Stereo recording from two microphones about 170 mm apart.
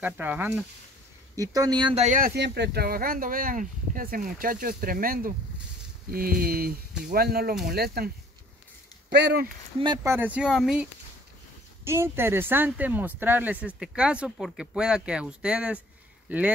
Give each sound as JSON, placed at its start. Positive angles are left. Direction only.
{"t": 0.0, "sound": "speech", "side_deg": -10}
{"t": 2.0, "sound": "speech", "side_deg": -50}
{"t": 2.3, "sound": "speech", "side_deg": -85}
{"t": 9.1, "sound": "speech", "side_deg": -75}
{"t": 10.0, "sound": "speech", "side_deg": -10}
{"t": 11.8, "sound": "speech", "side_deg": -15}